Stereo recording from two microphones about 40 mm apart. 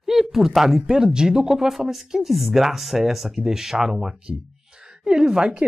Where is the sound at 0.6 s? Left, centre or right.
Centre.